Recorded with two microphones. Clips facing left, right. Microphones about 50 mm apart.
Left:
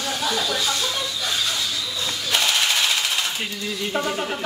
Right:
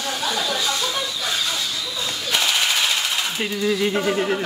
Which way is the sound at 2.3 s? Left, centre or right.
Centre.